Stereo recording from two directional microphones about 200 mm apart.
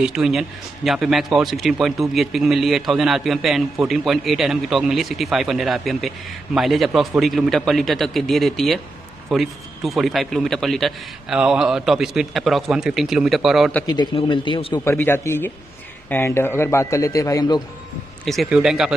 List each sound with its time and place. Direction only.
0.0 s a man's voice: 5° right (ahead or behind)
13.8 s a man's voice: 20° left (ahead or behind)
14.9 s a man's voice: 10° left (ahead or behind)
18.2 s a man's voice: centre (ahead or behind)